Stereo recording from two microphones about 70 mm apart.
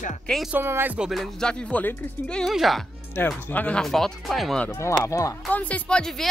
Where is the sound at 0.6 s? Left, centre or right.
Right.